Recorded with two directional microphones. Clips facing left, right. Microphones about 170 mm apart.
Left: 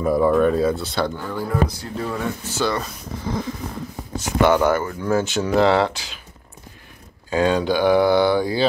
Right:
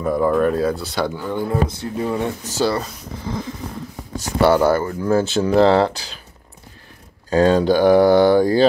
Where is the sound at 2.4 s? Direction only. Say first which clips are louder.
Right 2 dB; 35° right (ahead or behind).